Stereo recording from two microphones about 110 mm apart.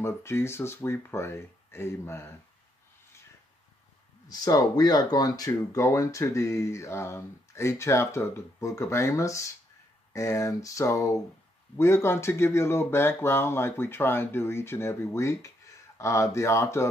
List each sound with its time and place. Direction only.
0.0 s speech: 25° left (ahead or behind)
4.3 s speech: 35° left (ahead or behind)